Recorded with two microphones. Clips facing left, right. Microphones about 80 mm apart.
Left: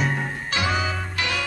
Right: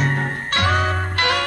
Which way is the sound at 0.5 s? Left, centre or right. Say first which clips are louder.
Right 5 dB; right.